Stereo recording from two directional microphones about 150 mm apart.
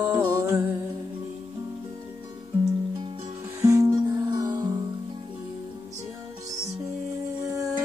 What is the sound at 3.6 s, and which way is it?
Music, 20° right (ahead or behind).